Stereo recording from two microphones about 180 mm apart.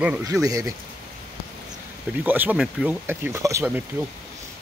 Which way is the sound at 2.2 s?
10° right (ahead or behind).